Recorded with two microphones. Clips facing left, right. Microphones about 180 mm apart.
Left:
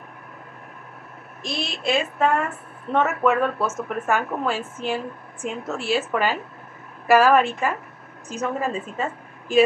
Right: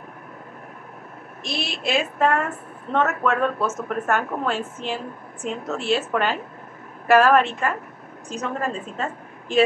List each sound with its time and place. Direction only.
1.4 s a woman's voice: centre (ahead or behind)